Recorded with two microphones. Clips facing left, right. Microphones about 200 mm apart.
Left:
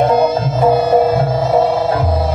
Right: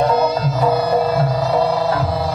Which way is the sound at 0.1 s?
50° left (ahead or behind).